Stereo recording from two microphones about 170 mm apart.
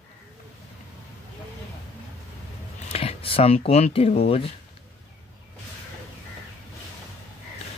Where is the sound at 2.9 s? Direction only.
35° left (ahead or behind).